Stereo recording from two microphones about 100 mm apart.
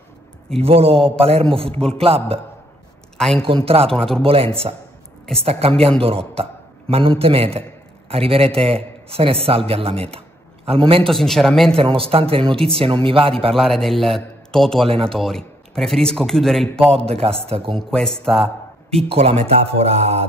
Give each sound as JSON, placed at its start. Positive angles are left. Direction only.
{"t": 0.6, "sound": "a man's voice", "side_deg": -70}
{"t": 3.2, "sound": "a woman's voice", "side_deg": 5}
{"t": 3.4, "sound": "a man's voice", "side_deg": -65}
{"t": 3.9, "sound": "speech", "side_deg": 5}
{"t": 4.2, "sound": "a man's voice", "side_deg": -70}
{"t": 11.1, "sound": "speech", "side_deg": 5}
{"t": 11.7, "sound": "speech", "side_deg": -65}
{"t": 13.6, "sound": "speech", "side_deg": 5}
{"t": 16.9, "sound": "a man's voice", "side_deg": -80}
{"t": 17.7, "sound": "speech", "side_deg": 5}
{"t": 19.0, "sound": "speech", "side_deg": -75}